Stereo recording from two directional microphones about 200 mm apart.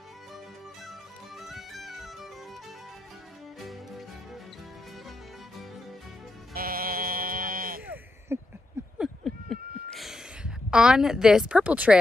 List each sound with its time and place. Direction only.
0.8 s music: centre (ahead or behind)
6.5 s sheep: 45° right (ahead or behind)
7.8 s a sound: 10° right (ahead or behind)